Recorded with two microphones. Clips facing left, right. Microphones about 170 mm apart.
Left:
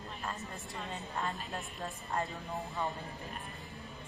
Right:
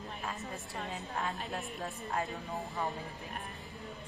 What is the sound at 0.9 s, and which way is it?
A woman's voice, centre (ahead or behind).